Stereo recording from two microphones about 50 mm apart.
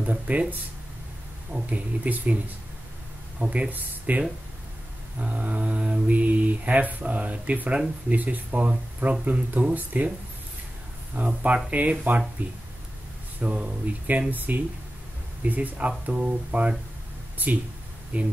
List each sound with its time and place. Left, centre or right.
0.0 s mantra: right
1.5 s speech: right
3.3 s speech: right
5.2 s mantra: right
8.1 s speech: right
11.1 s mantra: right
12.4 s speech: right
13.4 s mantra: right
14.3 s speech: right
16.1 s mantra: right
18.1 s speech: right